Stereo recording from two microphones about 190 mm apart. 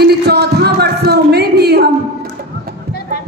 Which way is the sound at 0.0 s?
60° right (ahead or behind).